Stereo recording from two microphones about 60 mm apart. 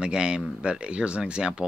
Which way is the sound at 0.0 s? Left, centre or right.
Centre.